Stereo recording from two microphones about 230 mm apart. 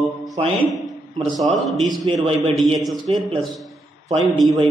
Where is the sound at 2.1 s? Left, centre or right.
Right.